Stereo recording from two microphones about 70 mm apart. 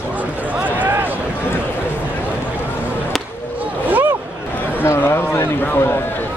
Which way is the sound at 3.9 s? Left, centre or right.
Right.